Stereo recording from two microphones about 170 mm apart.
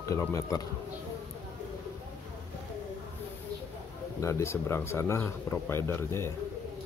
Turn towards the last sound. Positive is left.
turn(degrees=15)  # may be behind; listen again after turning